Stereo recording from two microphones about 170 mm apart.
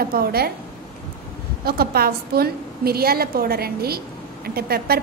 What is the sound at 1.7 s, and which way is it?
A woman's voice, 65° right (ahead or behind).